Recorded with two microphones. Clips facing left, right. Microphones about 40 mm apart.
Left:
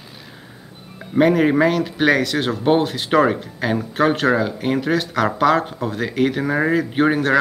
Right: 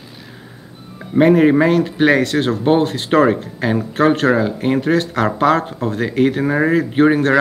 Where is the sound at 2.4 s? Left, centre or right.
Centre.